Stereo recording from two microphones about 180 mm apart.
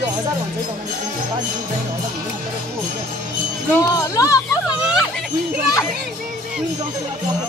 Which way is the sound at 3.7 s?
15° left (ahead or behind).